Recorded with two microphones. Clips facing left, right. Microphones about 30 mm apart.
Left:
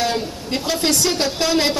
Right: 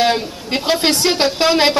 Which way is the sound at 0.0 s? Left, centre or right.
Right.